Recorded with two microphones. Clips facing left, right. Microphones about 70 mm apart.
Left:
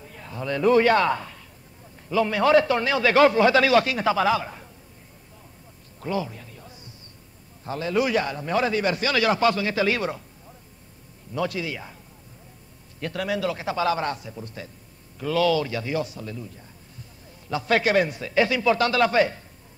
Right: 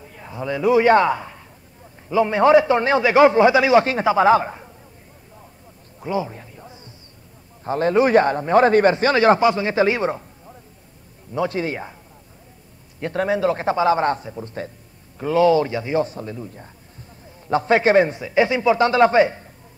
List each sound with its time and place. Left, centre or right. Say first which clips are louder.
0.2 s a man's voice: right 1 dB; centre
0.8 s a man's voice: right 5 dB; right
4.3 s a man's voice: right 8 dB; right
5.9 s music: right 4 dB; centre
7.6 s a man's voice: right 7 dB; right
9.4 s speech: right 4 dB; right
11.3 s a man's voice: right 5 dB; right
13.0 s a man's voice: right 6 dB; right